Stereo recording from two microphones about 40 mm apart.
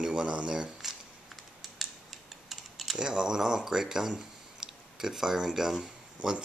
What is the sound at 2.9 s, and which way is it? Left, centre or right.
Speech, centre.